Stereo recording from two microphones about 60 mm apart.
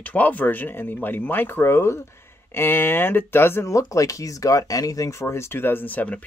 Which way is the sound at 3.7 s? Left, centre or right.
Left.